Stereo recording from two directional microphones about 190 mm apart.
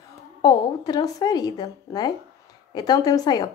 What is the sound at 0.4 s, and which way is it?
Speech, 20° left (ahead or behind).